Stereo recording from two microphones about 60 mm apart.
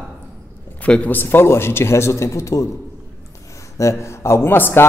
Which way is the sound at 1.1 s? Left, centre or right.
Left.